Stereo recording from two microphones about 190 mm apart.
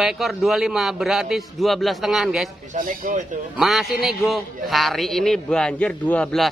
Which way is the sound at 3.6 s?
Centre (ahead or behind).